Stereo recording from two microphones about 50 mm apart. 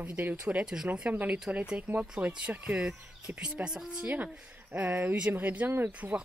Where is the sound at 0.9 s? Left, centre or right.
Right.